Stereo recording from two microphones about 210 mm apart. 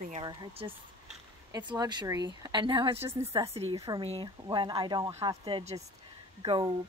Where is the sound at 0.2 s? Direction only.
20° right (ahead or behind).